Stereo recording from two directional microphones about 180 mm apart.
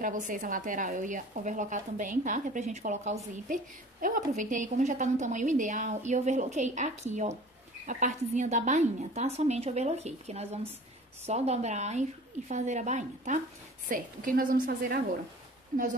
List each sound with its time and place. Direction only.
0.0 s a woman's voice: 45° right (ahead or behind)